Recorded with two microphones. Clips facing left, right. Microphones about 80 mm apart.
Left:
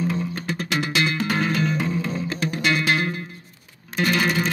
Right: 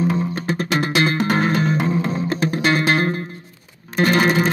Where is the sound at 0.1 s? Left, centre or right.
Right.